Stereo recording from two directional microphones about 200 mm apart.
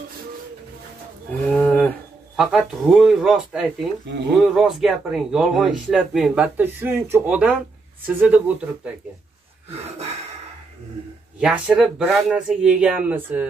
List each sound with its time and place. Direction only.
1.5 s speech: 5° left (ahead or behind)
9.7 s a sound: 30° right (ahead or behind)
11.3 s speech: 5° right (ahead or behind)